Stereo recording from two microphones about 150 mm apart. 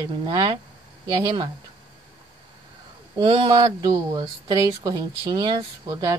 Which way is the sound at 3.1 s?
35° right (ahead or behind).